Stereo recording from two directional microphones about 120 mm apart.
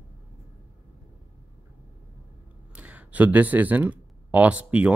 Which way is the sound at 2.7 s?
10° right (ahead or behind).